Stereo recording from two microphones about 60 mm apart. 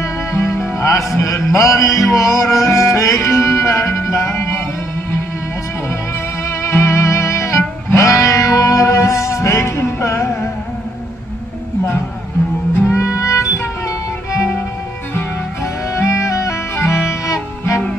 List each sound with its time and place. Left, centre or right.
0.0 s music: left
6.6 s music: left
12.8 s music: left
16.0 s music: left